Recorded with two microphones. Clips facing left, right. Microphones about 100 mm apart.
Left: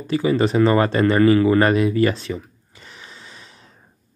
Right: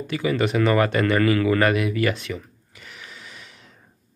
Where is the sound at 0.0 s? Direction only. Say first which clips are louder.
Left 4 dB; 30° left (ahead or behind).